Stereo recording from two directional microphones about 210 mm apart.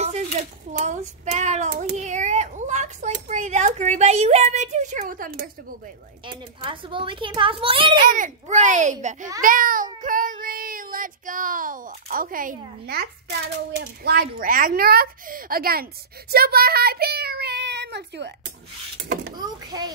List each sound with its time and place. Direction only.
0.0 s a child's voice: 35° right (ahead or behind)
6.2 s a child's voice: 25° right (ahead or behind)
8.0 s a child's voice: 40° right (ahead or behind)
19.3 s a child's voice: 20° right (ahead or behind)